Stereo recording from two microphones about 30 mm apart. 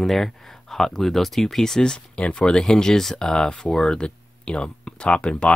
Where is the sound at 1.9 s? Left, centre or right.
Left.